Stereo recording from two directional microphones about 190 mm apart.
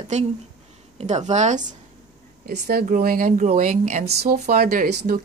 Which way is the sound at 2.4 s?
50° right (ahead or behind).